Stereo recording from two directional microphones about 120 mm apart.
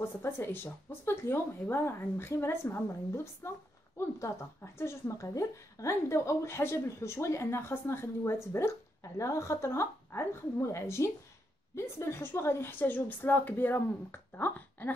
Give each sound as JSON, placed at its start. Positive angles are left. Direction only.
{"t": 0.0, "sound": "a woman's voice", "side_deg": 20}